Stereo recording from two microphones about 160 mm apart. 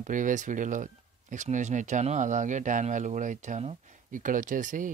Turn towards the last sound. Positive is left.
turn(degrees=-55)  # may be behind; listen again after turning